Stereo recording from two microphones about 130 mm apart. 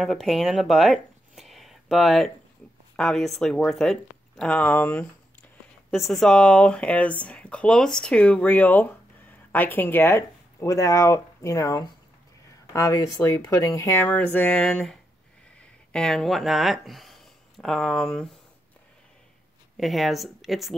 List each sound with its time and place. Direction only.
0.0 s speech: centre (ahead or behind)
5.9 s speech: centre (ahead or behind)
19.8 s speech: centre (ahead or behind)